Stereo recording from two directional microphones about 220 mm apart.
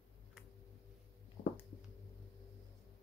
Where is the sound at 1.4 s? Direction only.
35° left (ahead or behind).